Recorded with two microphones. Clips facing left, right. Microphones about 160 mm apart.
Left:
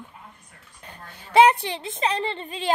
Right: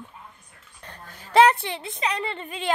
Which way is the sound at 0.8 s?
10° left (ahead or behind).